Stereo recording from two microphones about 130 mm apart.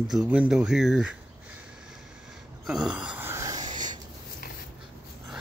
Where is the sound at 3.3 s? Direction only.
25° right (ahead or behind).